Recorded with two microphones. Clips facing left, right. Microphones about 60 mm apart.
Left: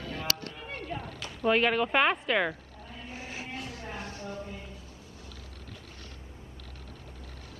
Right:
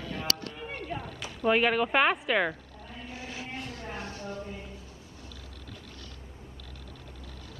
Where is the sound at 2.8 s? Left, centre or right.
Left.